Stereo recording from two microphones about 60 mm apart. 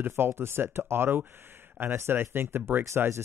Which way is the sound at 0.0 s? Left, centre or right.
Right.